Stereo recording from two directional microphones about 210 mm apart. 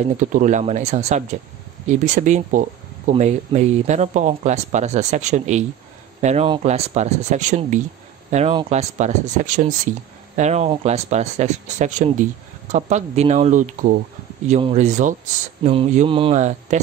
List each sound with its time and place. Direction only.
0.1 s speech: 35° right (ahead or behind)